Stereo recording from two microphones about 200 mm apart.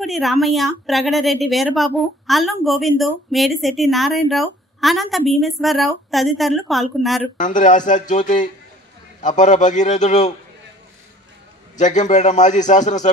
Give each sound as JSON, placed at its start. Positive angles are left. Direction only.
{"t": 0.0, "sound": "a woman's voice", "side_deg": 0}
{"t": 7.3, "sound": "a man's voice", "side_deg": 40}
{"t": 11.8, "sound": "a man's voice", "side_deg": 35}